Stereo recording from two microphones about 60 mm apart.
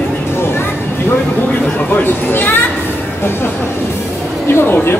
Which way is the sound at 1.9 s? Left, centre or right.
Left.